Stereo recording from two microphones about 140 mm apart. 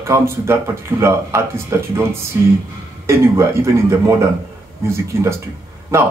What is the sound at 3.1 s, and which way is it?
Speech, 20° right (ahead or behind).